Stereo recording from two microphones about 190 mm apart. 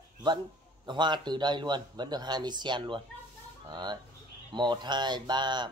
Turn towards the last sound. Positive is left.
turn(degrees=-25)  # may be behind; listen again after turning